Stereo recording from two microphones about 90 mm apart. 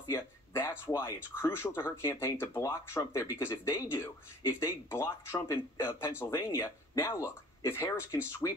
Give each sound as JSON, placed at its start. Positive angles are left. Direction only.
{"t": 0.1, "sound": "speech", "side_deg": 30}